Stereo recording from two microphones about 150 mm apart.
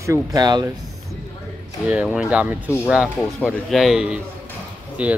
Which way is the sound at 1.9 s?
5° right (ahead or behind).